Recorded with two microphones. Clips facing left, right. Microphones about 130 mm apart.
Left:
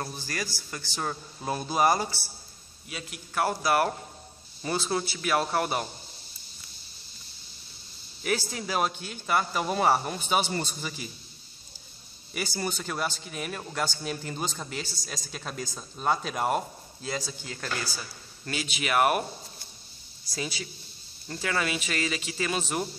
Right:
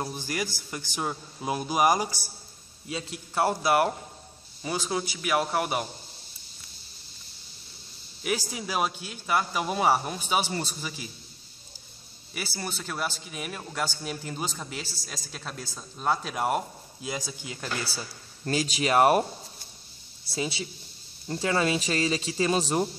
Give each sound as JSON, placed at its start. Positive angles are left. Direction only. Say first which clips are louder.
{"t": 0.0, "sound": "a man's voice", "louder": "right 3 dB", "side_deg": -15}
{"t": 2.9, "sound": "a man's voice", "louder": "right 4 dB", "side_deg": -25}
{"t": 4.6, "sound": "a man's voice", "louder": "left 1 dB", "side_deg": -10}
{"t": 8.2, "sound": "speech", "louder": "left 1 dB", "side_deg": -10}
{"t": 12.4, "sound": "speech", "louder": "left 3 dB", "side_deg": 0}
{"t": 17.8, "sound": "speech", "louder": "right 1 dB", "side_deg": -30}
{"t": 20.2, "sound": "a man's voice", "louder": "right 3 dB", "side_deg": -25}